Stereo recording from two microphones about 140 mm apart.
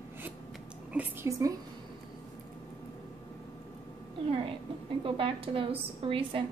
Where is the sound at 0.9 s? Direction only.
20° right (ahead or behind).